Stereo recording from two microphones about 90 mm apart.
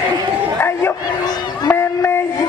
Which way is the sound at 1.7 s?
20° left (ahead or behind).